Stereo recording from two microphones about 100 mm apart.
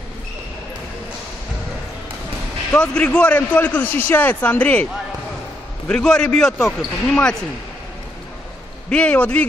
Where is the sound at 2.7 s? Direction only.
10° left (ahead or behind).